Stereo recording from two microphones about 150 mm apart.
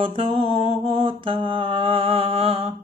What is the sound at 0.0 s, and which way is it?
Mantra, 40° right (ahead or behind).